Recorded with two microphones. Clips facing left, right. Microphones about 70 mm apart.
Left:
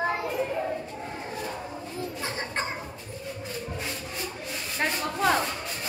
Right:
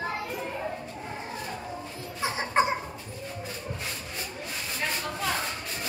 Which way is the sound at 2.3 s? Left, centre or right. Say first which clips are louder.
Right 10 dB; centre.